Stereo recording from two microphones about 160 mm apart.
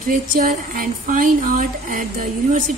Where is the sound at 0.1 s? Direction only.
55° right (ahead or behind).